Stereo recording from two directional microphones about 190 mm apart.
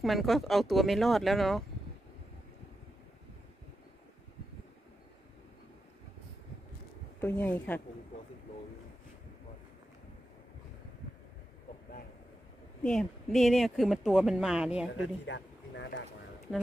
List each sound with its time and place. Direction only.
0.0 s speech: centre (ahead or behind)
7.2 s speech: 10° left (ahead or behind)
12.8 s speech: centre (ahead or behind)
15.2 s a sound: 70° left (ahead or behind)